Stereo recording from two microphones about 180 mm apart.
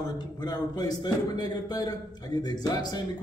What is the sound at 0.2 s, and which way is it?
A man's voice, 25° left (ahead or behind).